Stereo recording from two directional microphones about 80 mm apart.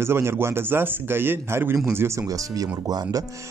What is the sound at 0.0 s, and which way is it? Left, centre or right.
A man's voice, right.